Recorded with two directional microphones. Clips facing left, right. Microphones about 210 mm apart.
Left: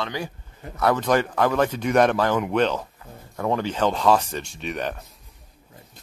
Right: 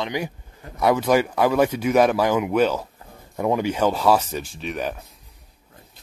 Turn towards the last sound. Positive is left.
turn(degrees=-5)  # may be behind; listen again after turning